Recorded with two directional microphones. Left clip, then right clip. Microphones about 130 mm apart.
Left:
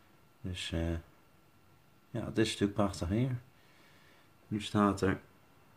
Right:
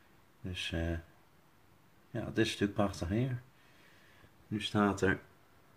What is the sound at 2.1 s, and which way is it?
Speech, 15° left (ahead or behind).